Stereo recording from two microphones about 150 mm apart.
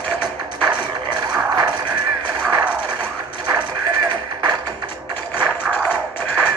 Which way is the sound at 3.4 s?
30° right (ahead or behind).